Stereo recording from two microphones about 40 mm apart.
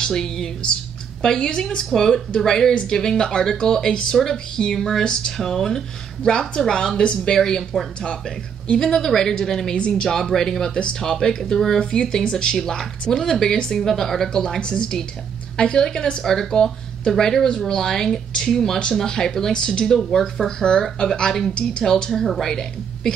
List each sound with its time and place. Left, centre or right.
0.0 s a sound: centre
1.2 s a woman's voice: centre
1.9 s a woman's voice: centre
2.7 s a woman's voice: left; by 5.0 s centre
5.0 s a woman's voice: centre
8.7 s a woman's voice: centre
11.8 s a woman's voice: centre